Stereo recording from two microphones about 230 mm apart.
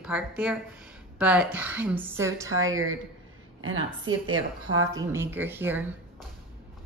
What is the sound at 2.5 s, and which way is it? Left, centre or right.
A woman's voice, right.